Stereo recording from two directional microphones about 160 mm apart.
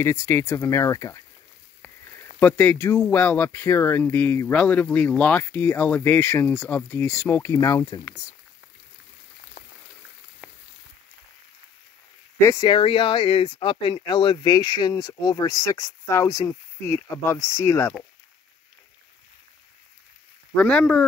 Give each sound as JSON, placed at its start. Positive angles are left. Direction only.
{"t": 0.0, "sound": "speech", "side_deg": 15}
{"t": 10.4, "sound": "a sound", "side_deg": -10}
{"t": 12.4, "sound": "speech", "side_deg": 15}
{"t": 12.6, "sound": "speech", "side_deg": 35}
{"t": 20.5, "sound": "speech", "side_deg": 5}